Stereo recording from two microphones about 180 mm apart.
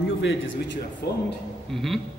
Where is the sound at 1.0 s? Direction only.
65° left (ahead or behind).